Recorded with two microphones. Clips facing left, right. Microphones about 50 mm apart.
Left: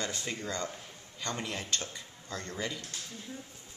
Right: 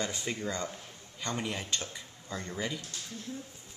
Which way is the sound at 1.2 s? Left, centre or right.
Centre.